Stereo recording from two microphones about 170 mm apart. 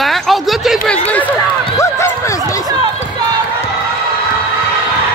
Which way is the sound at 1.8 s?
15° left (ahead or behind).